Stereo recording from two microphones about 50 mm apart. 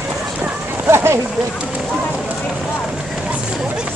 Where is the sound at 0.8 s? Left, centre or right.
Right.